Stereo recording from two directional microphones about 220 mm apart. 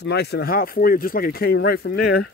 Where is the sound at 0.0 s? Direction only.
50° left (ahead or behind).